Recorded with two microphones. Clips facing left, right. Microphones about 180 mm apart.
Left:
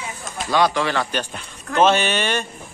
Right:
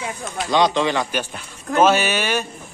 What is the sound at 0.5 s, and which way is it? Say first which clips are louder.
A man's voice: right 1 dB; 20° right (ahead or behind).